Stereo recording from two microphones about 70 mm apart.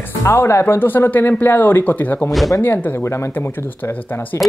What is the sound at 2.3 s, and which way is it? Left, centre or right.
Speech, centre.